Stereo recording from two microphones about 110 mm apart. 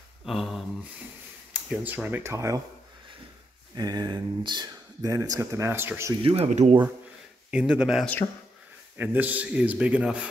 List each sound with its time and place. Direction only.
0.2 s a sound: centre (ahead or behind)
1.5 s speech: 10° right (ahead or behind); by 2.6 s 30° right (ahead or behind)
3.7 s speech: 35° right (ahead or behind)
6.2 s speech: 65° right (ahead or behind); by 6.8 s 80° right
7.5 s speech: 10° right (ahead or behind)